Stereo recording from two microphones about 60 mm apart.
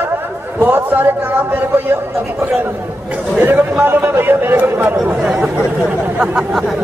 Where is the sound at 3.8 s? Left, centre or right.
Right.